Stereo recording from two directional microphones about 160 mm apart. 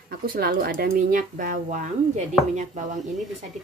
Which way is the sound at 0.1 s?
65° right (ahead or behind).